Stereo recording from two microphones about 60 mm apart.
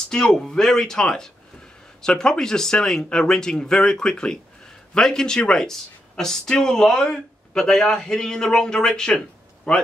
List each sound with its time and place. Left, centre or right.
0.1 s speech: centre